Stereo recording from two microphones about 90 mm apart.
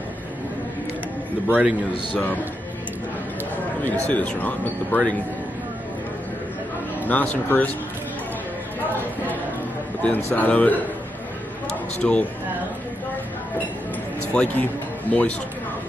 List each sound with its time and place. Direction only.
1.5 s a man's voice: 15° right (ahead or behind)
4.1 s speech: 15° left (ahead or behind)
7.1 s speech: 20° left (ahead or behind)
10.0 s speech: 20° left (ahead or behind)
12.0 s speech: 10° left (ahead or behind)
14.3 s speech: 15° left (ahead or behind)